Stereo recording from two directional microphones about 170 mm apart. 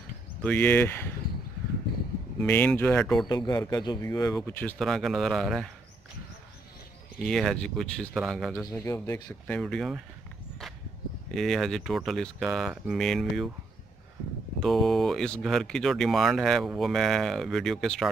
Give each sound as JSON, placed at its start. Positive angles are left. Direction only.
{"t": 0.4, "sound": "speech", "side_deg": 10}
{"t": 2.4, "sound": "speech", "side_deg": 10}
{"t": 3.3, "sound": "speech", "side_deg": 20}
{"t": 4.5, "sound": "speech", "side_deg": 10}
{"t": 7.2, "sound": "speech", "side_deg": 5}
{"t": 8.5, "sound": "speech", "side_deg": 15}
{"t": 9.6, "sound": "speech", "side_deg": 0}
{"t": 11.3, "sound": "speech", "side_deg": 0}
{"t": 14.6, "sound": "speech", "side_deg": 0}